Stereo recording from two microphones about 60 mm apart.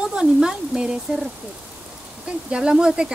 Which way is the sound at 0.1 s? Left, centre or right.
Centre.